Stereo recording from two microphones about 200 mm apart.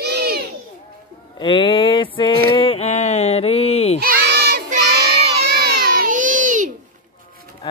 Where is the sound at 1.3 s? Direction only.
25° left (ahead or behind).